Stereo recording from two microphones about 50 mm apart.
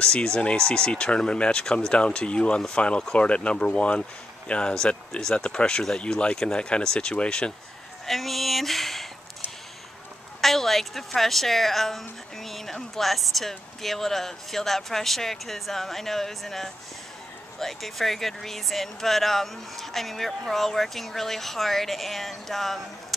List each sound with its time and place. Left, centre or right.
0.0 s speech: centre
8.1 s speech: centre
10.4 s speech: centre